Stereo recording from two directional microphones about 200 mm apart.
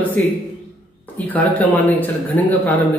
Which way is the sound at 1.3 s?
10° left (ahead or behind).